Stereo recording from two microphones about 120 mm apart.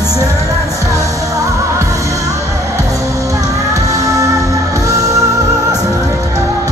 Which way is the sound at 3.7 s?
25° right (ahead or behind).